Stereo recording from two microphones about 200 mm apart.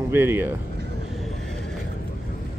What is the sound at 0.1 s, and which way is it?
Speech, 10° right (ahead or behind).